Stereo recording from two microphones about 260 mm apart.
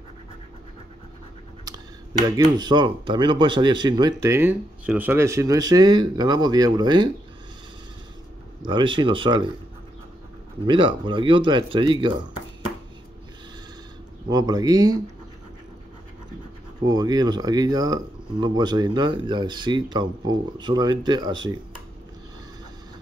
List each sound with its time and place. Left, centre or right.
2.2 s speech: centre
8.6 s speech: centre
10.7 s speech: centre
14.3 s speech: centre
16.8 s speech: centre